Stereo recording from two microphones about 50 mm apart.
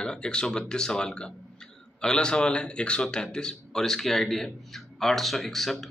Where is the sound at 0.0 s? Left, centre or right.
Centre.